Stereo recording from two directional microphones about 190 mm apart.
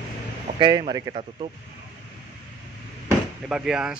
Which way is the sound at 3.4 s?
5° right (ahead or behind).